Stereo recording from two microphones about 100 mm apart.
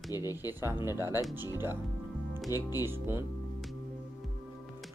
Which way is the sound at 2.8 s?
25° right (ahead or behind).